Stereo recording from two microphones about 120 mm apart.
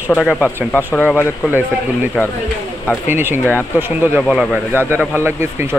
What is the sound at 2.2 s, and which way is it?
Speech, centre (ahead or behind).